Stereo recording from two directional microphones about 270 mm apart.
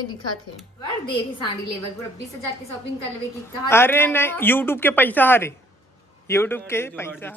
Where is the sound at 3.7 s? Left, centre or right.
Centre.